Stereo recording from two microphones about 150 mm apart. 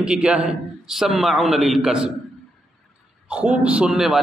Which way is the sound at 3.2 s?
5° right (ahead or behind).